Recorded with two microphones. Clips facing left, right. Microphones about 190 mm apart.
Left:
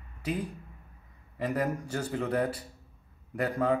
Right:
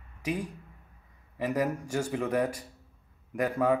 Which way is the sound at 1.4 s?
15° right (ahead or behind).